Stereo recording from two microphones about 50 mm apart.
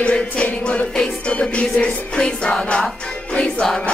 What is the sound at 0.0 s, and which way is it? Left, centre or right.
Music, left.